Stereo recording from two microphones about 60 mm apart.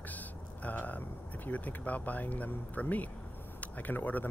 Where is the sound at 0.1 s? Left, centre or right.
Left.